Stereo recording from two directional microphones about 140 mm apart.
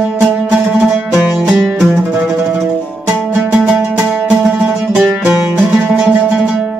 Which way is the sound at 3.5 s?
10° right (ahead or behind).